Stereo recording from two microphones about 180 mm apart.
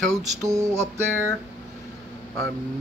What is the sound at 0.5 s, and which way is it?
Music, 15° right (ahead or behind).